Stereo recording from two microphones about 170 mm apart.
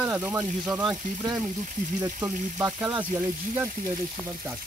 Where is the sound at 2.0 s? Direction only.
15° right (ahead or behind).